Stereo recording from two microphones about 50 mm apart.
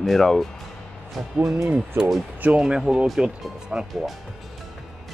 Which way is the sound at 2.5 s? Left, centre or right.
Centre.